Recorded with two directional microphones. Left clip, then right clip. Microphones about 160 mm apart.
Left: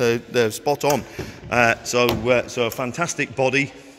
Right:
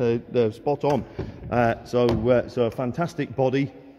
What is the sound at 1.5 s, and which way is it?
Speech, 20° right (ahead or behind).